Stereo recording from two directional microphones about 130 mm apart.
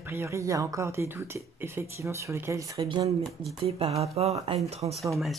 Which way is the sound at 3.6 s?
50° right (ahead or behind).